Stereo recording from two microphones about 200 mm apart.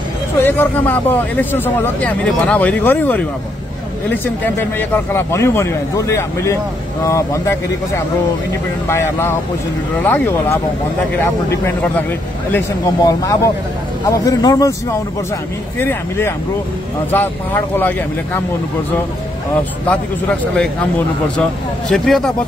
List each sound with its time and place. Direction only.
0.4 s speech: 10° left (ahead or behind)
15.8 s speech: 10° left (ahead or behind)
19.9 s speech: 5° left (ahead or behind)
21.8 s speech: centre (ahead or behind)